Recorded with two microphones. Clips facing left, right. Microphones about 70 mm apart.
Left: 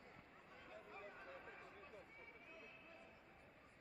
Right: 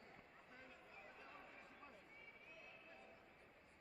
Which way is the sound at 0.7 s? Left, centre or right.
Left.